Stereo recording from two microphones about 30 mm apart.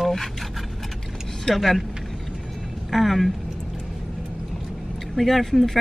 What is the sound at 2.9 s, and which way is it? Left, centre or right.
Speech, centre.